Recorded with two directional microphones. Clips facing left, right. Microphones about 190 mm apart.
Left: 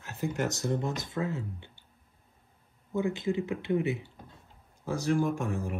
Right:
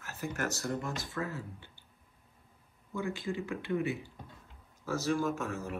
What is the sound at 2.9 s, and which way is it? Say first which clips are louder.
Speech: left 6 dB; 20° left (ahead or behind).